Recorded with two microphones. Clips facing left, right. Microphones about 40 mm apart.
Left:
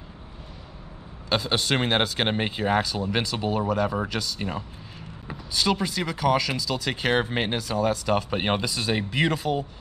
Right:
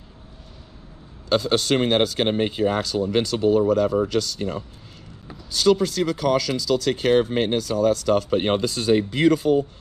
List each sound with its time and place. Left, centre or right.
1.3 s speech: centre